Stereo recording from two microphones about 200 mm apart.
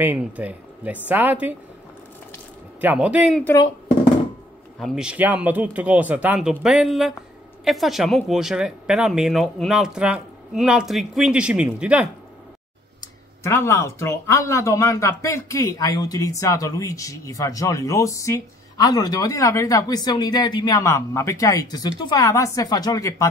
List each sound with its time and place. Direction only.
0.0 s speech: 10° right (ahead or behind)
2.8 s speech: 5° right (ahead or behind)
4.7 s speech: centre (ahead or behind)
13.4 s speech: 15° left (ahead or behind)